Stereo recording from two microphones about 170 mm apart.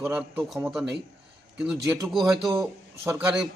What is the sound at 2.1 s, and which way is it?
Speech, centre (ahead or behind).